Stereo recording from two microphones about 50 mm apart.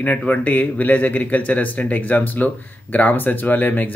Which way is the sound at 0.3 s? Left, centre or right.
Left.